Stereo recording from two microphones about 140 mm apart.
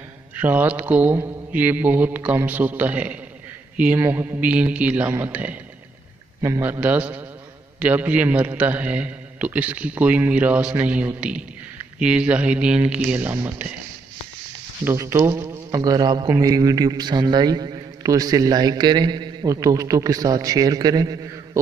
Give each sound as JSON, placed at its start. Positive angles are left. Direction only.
{"t": 0.4, "sound": "a man's voice", "side_deg": -15}
{"t": 14.9, "sound": "a man's voice", "side_deg": -20}